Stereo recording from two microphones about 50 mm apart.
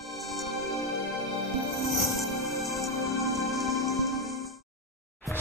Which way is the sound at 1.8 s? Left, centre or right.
Centre.